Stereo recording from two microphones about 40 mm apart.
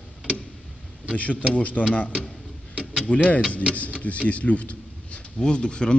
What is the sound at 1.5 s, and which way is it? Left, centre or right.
A man's voice, left.